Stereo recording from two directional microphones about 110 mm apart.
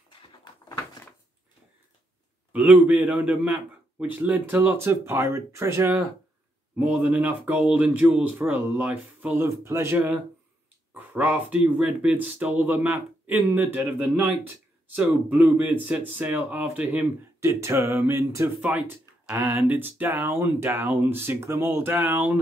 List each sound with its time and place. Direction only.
0.7 s a sound: 35° left (ahead or behind)
2.5 s speech: 10° right (ahead or behind)
6.8 s speech: 10° right (ahead or behind)
9.4 s speech: 25° right (ahead or behind)
18.7 s speech: 10° right (ahead or behind)